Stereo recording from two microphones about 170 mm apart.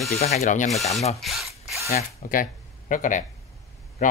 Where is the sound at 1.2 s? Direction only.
Centre (ahead or behind).